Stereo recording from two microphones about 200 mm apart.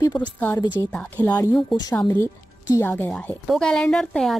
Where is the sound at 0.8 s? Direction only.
5° left (ahead or behind).